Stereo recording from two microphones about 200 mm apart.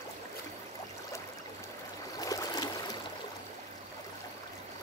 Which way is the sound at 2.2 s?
20° left (ahead or behind).